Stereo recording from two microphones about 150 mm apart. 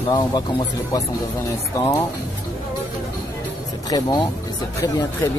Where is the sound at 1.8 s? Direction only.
20° left (ahead or behind).